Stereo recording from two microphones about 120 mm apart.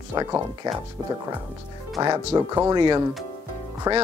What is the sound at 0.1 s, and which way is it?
Speech, 30° right (ahead or behind).